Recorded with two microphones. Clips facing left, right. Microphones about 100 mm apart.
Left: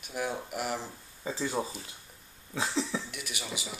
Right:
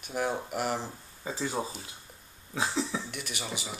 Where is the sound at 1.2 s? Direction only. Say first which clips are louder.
Even; 25° right (ahead or behind).